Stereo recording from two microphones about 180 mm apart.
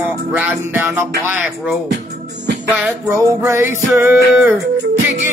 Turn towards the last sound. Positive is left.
turn(degrees=-10)  # may be behind; listen again after turning